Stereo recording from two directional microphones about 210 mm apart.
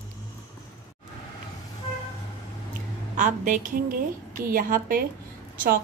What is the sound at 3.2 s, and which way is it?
A woman's voice, 35° right (ahead or behind).